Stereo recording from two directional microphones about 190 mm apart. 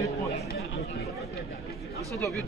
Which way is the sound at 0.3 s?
60° left (ahead or behind).